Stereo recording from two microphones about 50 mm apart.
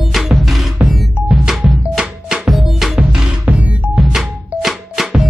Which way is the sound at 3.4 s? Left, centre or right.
Right.